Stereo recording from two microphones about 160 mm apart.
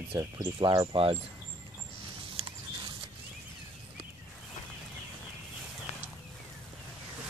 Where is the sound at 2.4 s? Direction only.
35° right (ahead or behind).